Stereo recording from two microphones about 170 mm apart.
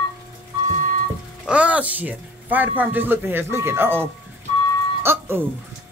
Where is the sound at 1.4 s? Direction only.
5° right (ahead or behind).